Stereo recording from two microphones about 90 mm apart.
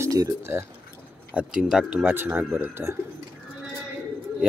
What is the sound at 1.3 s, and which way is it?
Speech, 10° right (ahead or behind).